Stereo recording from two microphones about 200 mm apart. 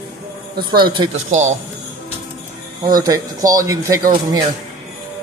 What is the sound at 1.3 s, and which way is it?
Speech, 35° right (ahead or behind).